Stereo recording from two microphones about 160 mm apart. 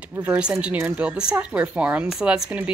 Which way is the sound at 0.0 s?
10° right (ahead or behind).